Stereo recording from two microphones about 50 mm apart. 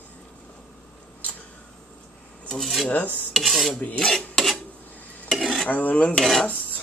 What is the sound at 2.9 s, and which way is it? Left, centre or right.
Filing, left.